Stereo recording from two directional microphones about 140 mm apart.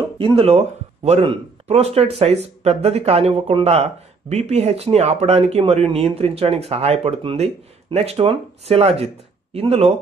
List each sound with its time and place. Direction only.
0.2 s speech: 40° right (ahead or behind)